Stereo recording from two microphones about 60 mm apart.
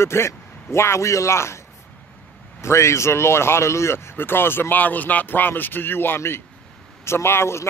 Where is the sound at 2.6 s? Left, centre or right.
Left.